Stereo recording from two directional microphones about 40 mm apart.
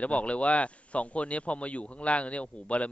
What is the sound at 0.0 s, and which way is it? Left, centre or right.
A man's voice, left.